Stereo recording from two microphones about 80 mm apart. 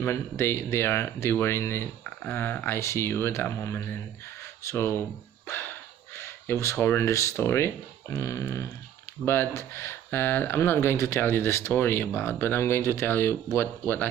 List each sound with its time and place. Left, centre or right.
0.0 s speech: left
9.2 s speech: left